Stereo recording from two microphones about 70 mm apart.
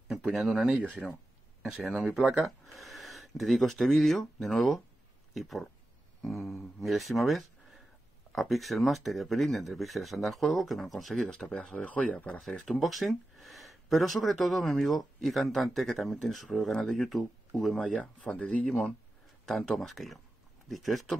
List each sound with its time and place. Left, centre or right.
0.3 s speech: centre; by 12.4 s left
12.4 s speech: centre
17.9 s speech: centre